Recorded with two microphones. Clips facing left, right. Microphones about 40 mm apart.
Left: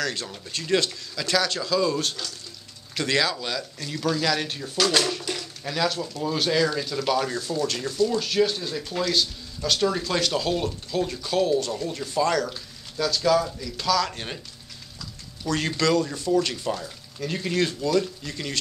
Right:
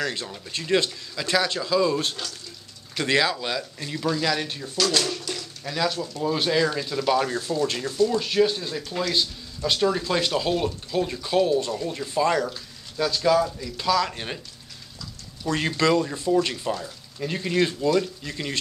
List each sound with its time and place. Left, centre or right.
0.0 s speech: centre
4.2 s speech: centre
5.6 s speech: centre
7.3 s speech: right
7.8 s speech: centre
15.4 s speech: right